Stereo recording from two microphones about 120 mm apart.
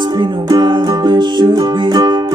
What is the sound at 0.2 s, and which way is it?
Music, 40° right (ahead or behind).